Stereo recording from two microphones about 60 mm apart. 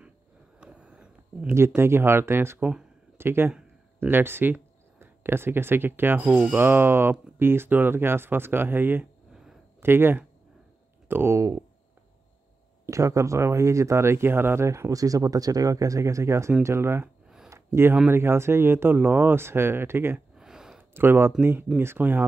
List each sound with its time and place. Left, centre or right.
0.6 s a sound: centre
1.8 s speech: right
6.2 s speech: right
6.5 s speech: right
9.3 s a sound: centre
9.8 s speech: right
11.3 s speech: right
12.8 s speech: right
14.7 s speech: right
17.5 s a sound: right
18.1 s speech: right
20.3 s a sound: centre
20.9 s speech: right